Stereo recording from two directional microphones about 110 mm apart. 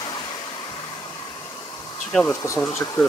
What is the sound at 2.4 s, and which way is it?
Speech, 25° left (ahead or behind).